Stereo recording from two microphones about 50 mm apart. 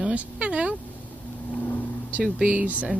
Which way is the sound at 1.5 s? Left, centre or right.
Left.